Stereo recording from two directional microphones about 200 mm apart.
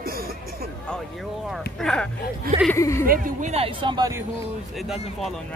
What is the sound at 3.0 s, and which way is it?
Speech, 45° right (ahead or behind).